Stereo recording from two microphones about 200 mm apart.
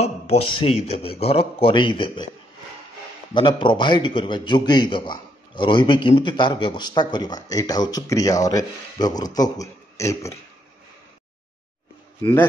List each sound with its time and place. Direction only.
0.0 s a man's voice: 30° left (ahead or behind)
3.3 s a man's voice: 25° left (ahead or behind)